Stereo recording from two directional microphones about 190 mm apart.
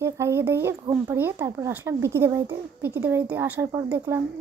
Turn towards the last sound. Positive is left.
turn(degrees=-10)  # may be behind; listen again after turning